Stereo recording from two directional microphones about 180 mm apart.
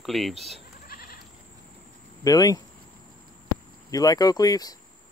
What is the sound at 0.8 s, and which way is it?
Goat, 55° left (ahead or behind).